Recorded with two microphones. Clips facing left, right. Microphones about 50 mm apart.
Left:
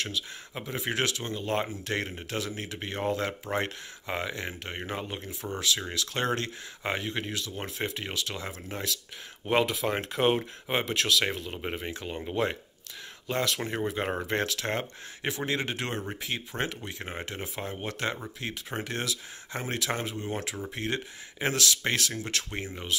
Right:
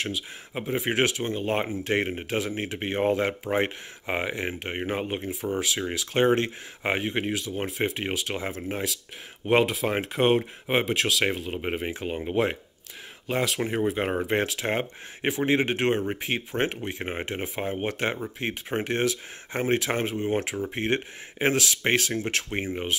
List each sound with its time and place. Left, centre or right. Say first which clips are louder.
0.0 s speech: right 3 dB; right
9.5 s speech: right 4 dB; centre; by 12.2 s right
13.3 s speech: right 3 dB; centre; by 22.9 s right